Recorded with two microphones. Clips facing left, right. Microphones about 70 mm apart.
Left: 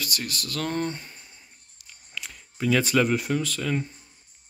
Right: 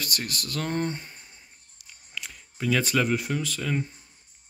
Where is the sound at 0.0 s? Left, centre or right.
Right; by 1.9 s centre.